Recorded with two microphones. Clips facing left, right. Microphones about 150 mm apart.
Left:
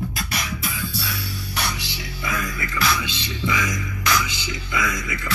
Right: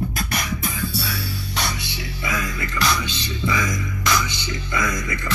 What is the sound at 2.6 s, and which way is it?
Music, 5° left (ahead or behind).